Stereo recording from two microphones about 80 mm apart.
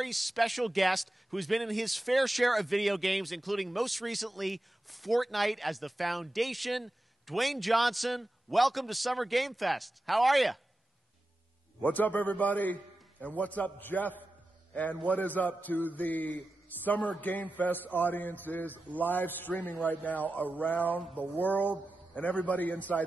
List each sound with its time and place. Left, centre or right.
0.0 s speech: centre
11.8 s a man's voice: left